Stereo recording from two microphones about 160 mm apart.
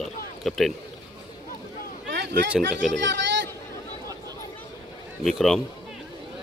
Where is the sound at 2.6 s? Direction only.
90° right.